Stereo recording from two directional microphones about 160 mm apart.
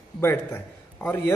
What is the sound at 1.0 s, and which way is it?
Speech, 10° left (ahead or behind).